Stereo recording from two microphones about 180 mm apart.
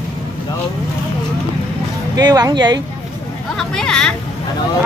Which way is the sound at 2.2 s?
20° right (ahead or behind).